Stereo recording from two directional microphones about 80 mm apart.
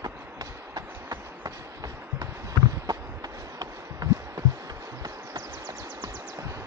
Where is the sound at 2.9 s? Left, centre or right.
Right.